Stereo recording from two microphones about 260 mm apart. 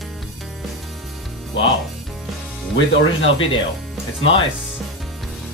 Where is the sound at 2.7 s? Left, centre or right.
Left.